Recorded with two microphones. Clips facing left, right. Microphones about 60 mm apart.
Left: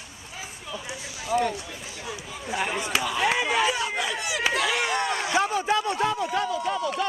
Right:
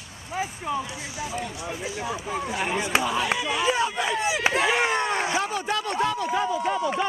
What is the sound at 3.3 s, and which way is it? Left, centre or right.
Speech, left.